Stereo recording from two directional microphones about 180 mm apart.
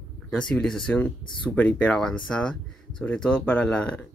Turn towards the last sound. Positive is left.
turn(degrees=5)  # may be behind; listen again after turning